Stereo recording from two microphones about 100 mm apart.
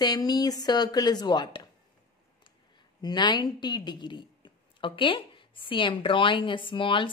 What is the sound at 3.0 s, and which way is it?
Speech, 45° left (ahead or behind).